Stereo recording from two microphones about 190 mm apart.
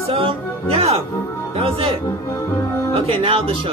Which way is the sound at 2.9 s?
30° right (ahead or behind).